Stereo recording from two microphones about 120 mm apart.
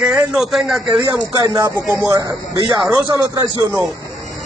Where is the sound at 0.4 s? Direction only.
Centre (ahead or behind).